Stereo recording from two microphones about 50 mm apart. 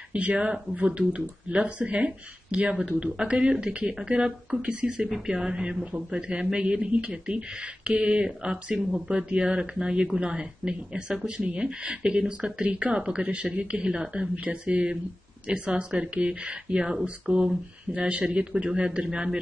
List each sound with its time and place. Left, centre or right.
0.1 s speech: right
13.2 s speech: right
17.9 s speech: right